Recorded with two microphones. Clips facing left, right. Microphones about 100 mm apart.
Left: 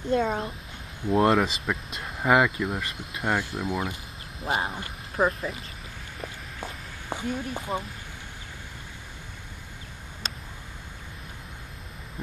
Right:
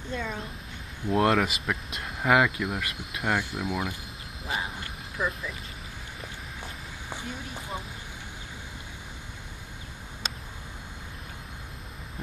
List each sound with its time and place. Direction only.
0.1 s speech: 45° left (ahead or behind)
1.0 s speech: centre (ahead or behind)
4.5 s speech: 45° left (ahead or behind)
6.6 s a sound: 20° left (ahead or behind)